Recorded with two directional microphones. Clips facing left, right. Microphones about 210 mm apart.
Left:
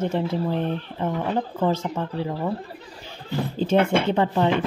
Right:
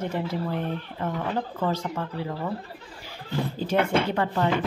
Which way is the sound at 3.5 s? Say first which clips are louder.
Left 4 dB; 25° left (ahead or behind).